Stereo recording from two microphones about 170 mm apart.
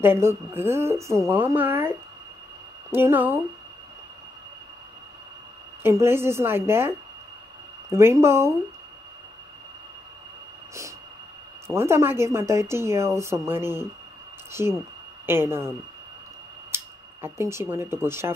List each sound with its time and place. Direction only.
0.0 s a woman's voice: 15° right (ahead or behind)
5.8 s a woman's voice: 15° right (ahead or behind)
11.6 s a woman's voice: 15° right (ahead or behind)
16.7 s speech: 15° right (ahead or behind)